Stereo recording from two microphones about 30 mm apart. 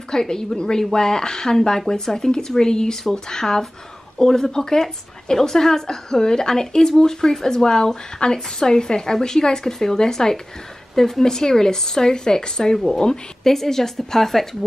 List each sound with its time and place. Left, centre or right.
0.1 s a woman's voice: centre
13.4 s speech: centre